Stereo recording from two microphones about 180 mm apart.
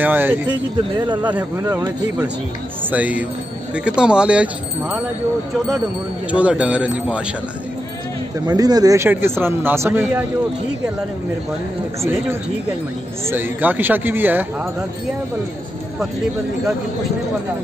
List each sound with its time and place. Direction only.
0.0 s speech: 10° right (ahead or behind)
0.9 s speech: 25° right (ahead or behind)
1.3 s speech: 10° right (ahead or behind)
2.9 s speech: 10° right (ahead or behind)
6.3 s speech: 5° right (ahead or behind)
8.5 s speech: 20° right (ahead or behind)
13.3 s speech: 10° right (ahead or behind)